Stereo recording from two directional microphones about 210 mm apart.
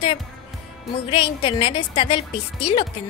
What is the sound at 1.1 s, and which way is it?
A woman's voice, 25° left (ahead or behind).